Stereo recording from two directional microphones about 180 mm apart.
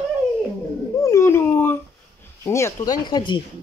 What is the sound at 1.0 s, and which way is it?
Dog, 15° left (ahead or behind).